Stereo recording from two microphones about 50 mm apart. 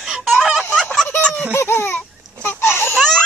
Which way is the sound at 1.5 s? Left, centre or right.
Left.